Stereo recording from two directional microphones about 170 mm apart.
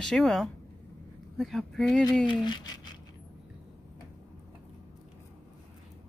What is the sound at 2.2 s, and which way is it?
Speech, 25° left (ahead or behind).